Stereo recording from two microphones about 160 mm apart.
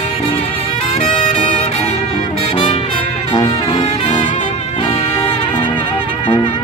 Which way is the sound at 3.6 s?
25° left (ahead or behind).